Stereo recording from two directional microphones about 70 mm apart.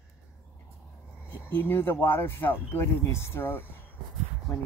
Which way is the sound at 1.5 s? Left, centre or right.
Left.